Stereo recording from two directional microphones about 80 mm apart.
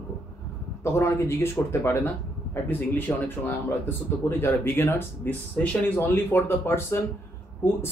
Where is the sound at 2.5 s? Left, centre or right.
Left.